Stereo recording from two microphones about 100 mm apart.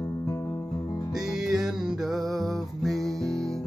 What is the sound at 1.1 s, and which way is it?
Music, 5° right (ahead or behind).